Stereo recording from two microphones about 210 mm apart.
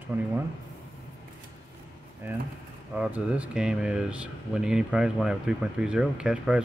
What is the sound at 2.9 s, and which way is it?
Speech, 5° right (ahead or behind).